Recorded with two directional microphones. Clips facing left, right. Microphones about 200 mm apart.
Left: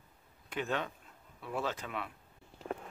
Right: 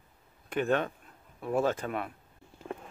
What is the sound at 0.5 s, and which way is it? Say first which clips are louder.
Speech: right 7 dB; 55° right (ahead or behind).